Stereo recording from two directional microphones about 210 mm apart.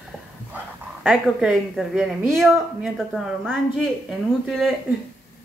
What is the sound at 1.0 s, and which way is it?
A woman's voice, 5° right (ahead or behind).